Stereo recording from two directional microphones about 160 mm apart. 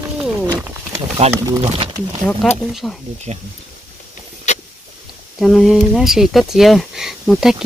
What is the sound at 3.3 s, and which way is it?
Speech, 40° right (ahead or behind).